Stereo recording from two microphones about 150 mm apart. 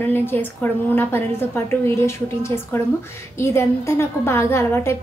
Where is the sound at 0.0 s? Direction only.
15° left (ahead or behind).